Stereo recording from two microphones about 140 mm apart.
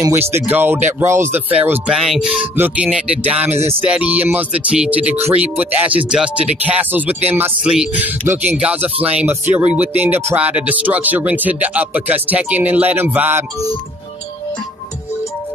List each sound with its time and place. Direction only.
0.0 s speech: 15° right (ahead or behind)
1.9 s speech: 5° right (ahead or behind)